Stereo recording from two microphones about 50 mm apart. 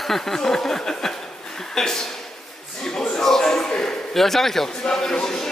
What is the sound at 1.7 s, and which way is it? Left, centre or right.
Speech, centre.